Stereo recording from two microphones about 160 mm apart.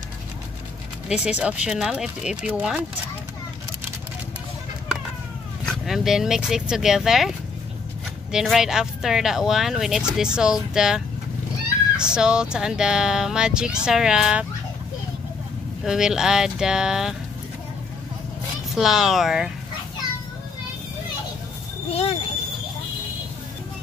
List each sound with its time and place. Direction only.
1.0 s speech: 5° right (ahead or behind)
5.7 s speech: centre (ahead or behind)
12.0 s speech: 5° right (ahead or behind)
15.8 s speech: 5° right (ahead or behind)
18.8 s speech: centre (ahead or behind)
21.9 s speech: 40° left (ahead or behind)